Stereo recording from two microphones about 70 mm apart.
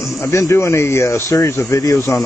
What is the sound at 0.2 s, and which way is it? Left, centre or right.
Speech, left.